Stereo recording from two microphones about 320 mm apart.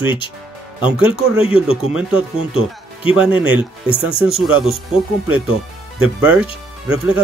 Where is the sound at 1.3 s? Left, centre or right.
Centre.